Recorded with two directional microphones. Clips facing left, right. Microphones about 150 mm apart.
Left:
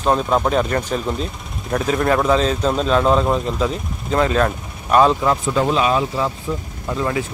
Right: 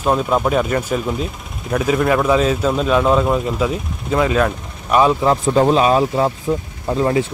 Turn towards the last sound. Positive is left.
turn(degrees=-35)  # may be behind; listen again after turning